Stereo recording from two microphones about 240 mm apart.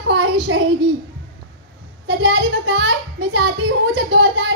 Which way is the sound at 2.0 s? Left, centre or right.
Right.